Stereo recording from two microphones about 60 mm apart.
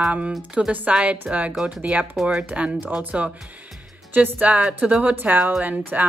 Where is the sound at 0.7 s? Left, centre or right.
Right.